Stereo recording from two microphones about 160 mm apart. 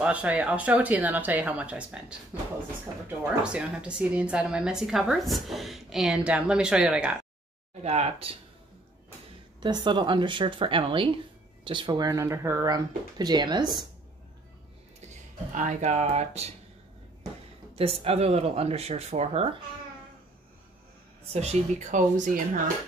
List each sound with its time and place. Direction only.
0.0 s a woman's voice: 10° right (ahead or behind)
7.8 s speech: 40° right (ahead or behind)
9.6 s speech: 25° right (ahead or behind)
15.5 s speech: 50° right (ahead or behind)
17.7 s speech: 40° right (ahead or behind)
21.3 s speech: 40° right (ahead or behind)